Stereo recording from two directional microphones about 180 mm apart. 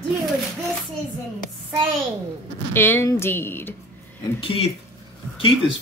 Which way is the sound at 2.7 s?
15° left (ahead or behind).